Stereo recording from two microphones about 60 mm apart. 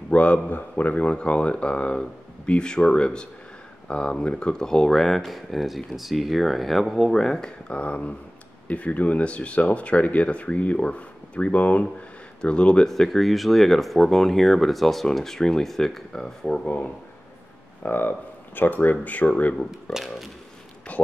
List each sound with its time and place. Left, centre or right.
0.1 s a man's voice: left
12.9 s speech: centre
16.6 s speech: left
19.7 s speech: centre
20.9 s a sound: left